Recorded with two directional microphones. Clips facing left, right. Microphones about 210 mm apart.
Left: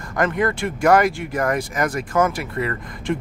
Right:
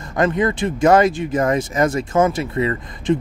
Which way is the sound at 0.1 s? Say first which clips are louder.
Right 3 dB; 20° right (ahead or behind).